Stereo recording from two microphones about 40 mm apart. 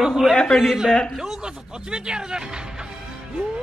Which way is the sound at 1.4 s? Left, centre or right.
Right.